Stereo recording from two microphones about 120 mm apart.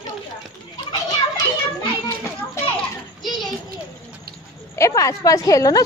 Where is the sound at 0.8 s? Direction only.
40° left (ahead or behind).